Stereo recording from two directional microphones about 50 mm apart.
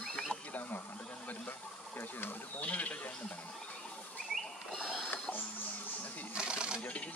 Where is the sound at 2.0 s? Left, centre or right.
Left.